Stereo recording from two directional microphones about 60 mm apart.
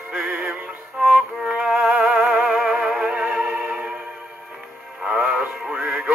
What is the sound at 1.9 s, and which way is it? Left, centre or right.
Music, centre.